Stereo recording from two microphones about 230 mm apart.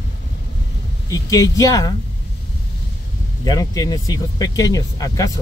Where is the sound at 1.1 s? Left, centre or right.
Centre.